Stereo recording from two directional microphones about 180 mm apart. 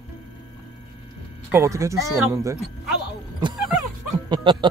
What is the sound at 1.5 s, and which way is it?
Speech, 15° right (ahead or behind).